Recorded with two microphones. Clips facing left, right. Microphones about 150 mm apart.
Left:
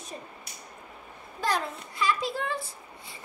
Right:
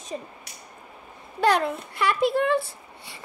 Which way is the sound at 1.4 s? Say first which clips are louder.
Right 8 dB; 65° right (ahead or behind).